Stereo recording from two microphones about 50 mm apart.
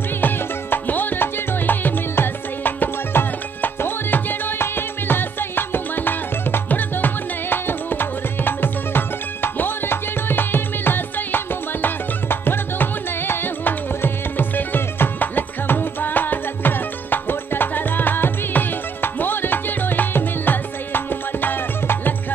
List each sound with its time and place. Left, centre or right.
0.2 s music: left